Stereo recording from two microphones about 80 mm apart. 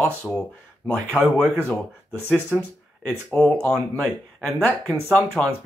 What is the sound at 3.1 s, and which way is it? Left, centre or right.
Speech, centre.